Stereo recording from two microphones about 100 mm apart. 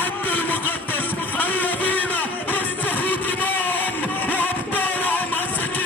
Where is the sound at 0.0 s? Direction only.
20° left (ahead or behind).